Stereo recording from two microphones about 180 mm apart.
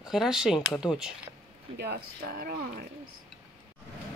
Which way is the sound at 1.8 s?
60° right (ahead or behind).